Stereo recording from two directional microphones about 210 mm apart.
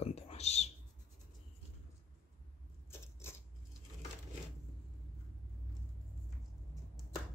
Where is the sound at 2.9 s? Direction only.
10° left (ahead or behind).